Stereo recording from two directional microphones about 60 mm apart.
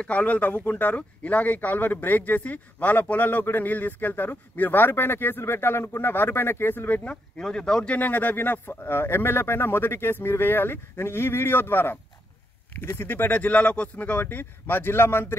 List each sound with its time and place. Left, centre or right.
0.0 s speech: left
7.1 s speech: centre
14.3 s speech: left